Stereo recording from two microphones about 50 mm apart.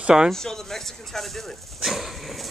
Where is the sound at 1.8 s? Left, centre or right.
Centre.